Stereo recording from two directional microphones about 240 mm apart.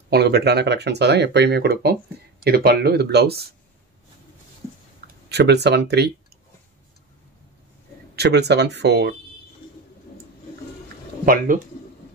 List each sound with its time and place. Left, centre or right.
0.1 s speech: right
5.0 s speech: right
8.2 s speech: right
11.2 s speech: right